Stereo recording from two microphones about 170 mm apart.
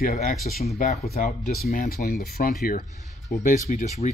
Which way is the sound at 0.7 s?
45° left (ahead or behind).